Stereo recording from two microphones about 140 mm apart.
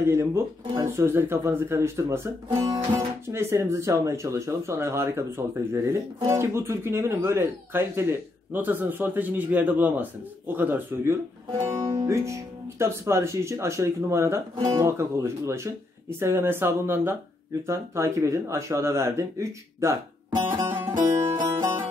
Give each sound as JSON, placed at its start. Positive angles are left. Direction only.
{"t": 0.1, "sound": "speech", "side_deg": -20}
{"t": 20.5, "sound": "music", "side_deg": -15}